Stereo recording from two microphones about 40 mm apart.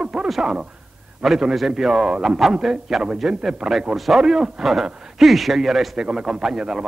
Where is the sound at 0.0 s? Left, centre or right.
Right.